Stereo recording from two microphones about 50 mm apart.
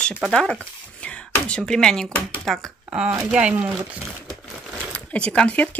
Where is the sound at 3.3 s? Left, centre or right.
Centre.